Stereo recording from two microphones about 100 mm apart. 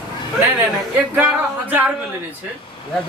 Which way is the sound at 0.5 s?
20° right (ahead or behind).